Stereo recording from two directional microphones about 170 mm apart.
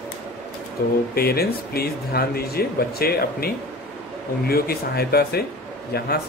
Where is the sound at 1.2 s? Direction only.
65° left (ahead or behind).